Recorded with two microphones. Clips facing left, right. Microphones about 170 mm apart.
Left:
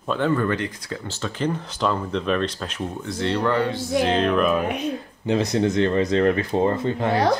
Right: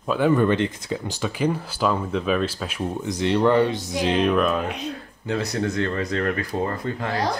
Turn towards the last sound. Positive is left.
turn(degrees=25)  # may be behind; listen again after turning